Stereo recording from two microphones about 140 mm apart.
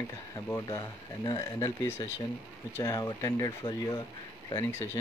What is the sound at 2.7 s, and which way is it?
Speech, 25° left (ahead or behind).